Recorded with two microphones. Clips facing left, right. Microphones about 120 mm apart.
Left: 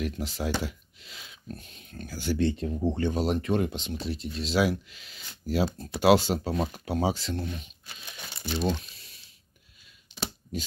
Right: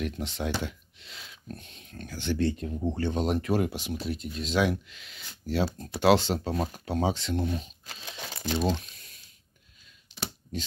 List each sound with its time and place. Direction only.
0.0 s speech: 5° left (ahead or behind)
2.3 s speech: 25° left (ahead or behind)
3.0 s speech: 10° left (ahead or behind)
3.3 s speech: 5° right (ahead or behind)
7.4 s speech: 35° right (ahead or behind)
7.8 s speech: 90° right
10.5 s speech: 10° left (ahead or behind)